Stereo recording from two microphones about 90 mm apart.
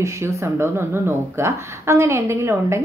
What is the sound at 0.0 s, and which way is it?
A woman's voice, 30° right (ahead or behind).